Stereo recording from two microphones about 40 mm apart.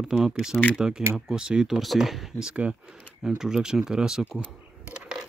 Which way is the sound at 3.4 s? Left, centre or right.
Centre.